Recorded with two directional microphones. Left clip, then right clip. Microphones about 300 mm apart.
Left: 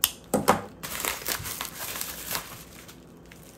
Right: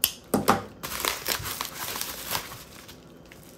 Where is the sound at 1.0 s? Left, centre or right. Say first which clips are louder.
Right 3 dB; centre.